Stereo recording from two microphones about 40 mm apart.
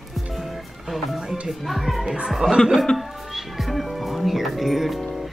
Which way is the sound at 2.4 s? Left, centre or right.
Right.